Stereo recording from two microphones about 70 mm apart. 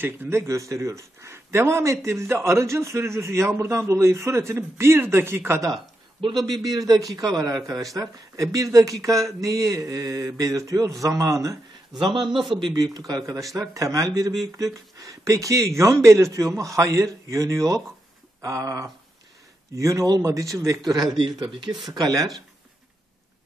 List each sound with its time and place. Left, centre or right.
0.0 s speech: right
0.4 s speech: right
6.3 s a man's voice: right
12.1 s a man's voice: centre
12.7 s a man's voice: right